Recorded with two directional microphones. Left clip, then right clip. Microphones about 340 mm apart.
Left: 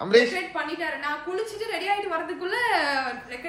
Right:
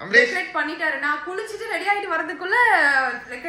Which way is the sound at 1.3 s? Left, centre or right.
Centre.